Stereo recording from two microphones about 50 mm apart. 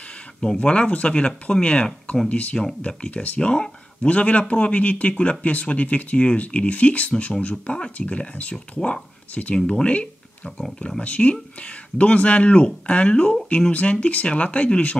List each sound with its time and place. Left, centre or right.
0.6 s speech: left
3.3 s speech: centre
9.8 s a sound: left
11.0 s speech: left